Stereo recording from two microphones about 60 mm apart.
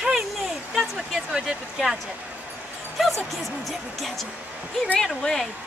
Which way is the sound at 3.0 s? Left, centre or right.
Centre.